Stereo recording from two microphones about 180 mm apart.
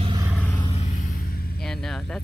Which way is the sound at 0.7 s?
40° left (ahead or behind).